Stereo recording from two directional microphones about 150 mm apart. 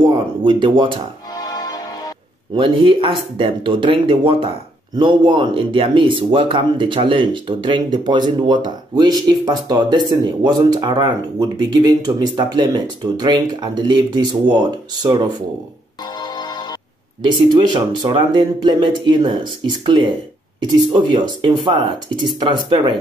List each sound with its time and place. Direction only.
0.0 s speech: 35° right (ahead or behind)
1.3 s music: 25° left (ahead or behind)
2.5 s speech: 35° right (ahead or behind)
16.2 s music: 30° left (ahead or behind)
17.2 s speech: 30° right (ahead or behind)